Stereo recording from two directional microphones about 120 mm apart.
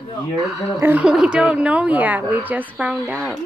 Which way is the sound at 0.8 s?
15° right (ahead or behind).